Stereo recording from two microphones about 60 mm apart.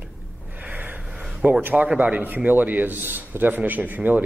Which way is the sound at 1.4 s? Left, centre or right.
Right.